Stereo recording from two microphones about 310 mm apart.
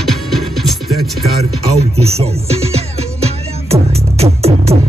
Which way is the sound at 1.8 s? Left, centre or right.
Centre.